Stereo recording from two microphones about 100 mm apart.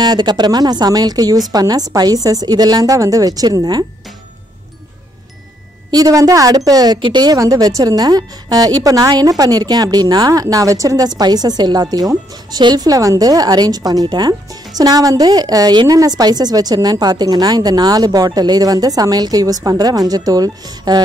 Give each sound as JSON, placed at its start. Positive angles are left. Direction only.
{"t": 0.0, "sound": "a woman's voice", "side_deg": -45}
{"t": 5.9, "sound": "a woman's voice", "side_deg": -40}